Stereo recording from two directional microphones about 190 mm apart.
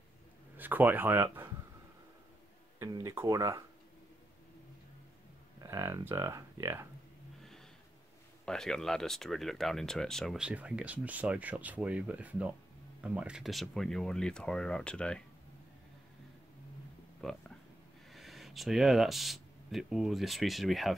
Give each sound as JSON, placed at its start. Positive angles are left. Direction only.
{"t": 0.6, "sound": "speech", "side_deg": -10}
{"t": 2.8, "sound": "speech", "side_deg": -15}
{"t": 5.6, "sound": "speech", "side_deg": -15}
{"t": 8.5, "sound": "speech", "side_deg": 5}
{"t": 17.2, "sound": "speech", "side_deg": 0}